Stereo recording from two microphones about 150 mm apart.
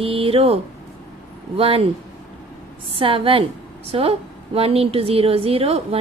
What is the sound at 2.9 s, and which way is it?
A woman's voice, 35° right (ahead or behind).